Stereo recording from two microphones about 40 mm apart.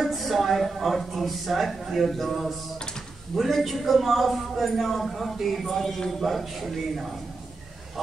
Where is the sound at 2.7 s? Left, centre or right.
Centre.